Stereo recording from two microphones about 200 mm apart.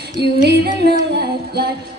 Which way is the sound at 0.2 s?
55° right (ahead or behind).